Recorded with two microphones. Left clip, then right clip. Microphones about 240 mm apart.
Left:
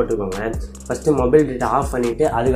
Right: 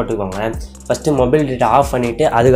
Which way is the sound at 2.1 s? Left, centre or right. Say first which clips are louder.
Right 6 dB; right.